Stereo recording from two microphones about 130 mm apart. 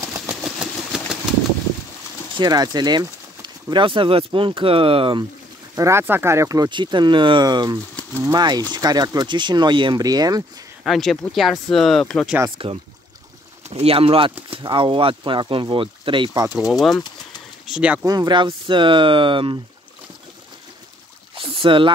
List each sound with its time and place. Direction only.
0.1 s engine: 5° right (ahead or behind)
2.3 s speech: 30° right (ahead or behind)
5.8 s speech: 20° right (ahead or behind)
10.8 s speech: centre (ahead or behind)
12.4 s speech: 45° right (ahead or behind)
17.6 s speech: 5° right (ahead or behind)
18.0 s speech: 30° right (ahead or behind)
21.4 s a sound: 45° right (ahead or behind)